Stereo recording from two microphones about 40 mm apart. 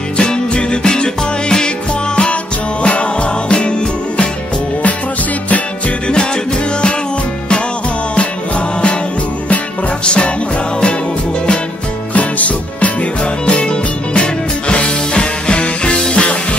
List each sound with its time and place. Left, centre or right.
0.2 s music: left
2.8 s music: left
8.2 s music: left
10.0 s music: left
12.1 s music: left